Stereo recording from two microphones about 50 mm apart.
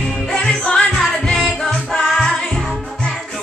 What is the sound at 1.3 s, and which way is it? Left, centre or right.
Music, centre.